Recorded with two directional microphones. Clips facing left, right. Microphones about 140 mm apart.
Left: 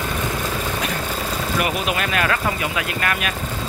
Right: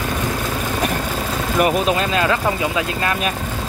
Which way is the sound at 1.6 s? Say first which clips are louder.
Right 7 dB; 30° right (ahead or behind).